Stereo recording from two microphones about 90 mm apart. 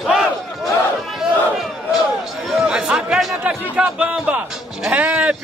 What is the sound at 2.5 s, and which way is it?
Speech, 10° right (ahead or behind).